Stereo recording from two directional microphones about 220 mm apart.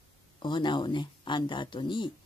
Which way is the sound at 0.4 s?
20° left (ahead or behind).